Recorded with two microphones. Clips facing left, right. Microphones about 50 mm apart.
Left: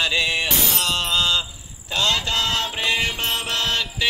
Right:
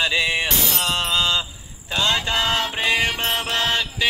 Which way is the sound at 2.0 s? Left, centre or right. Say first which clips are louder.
Right 1 dB; centre.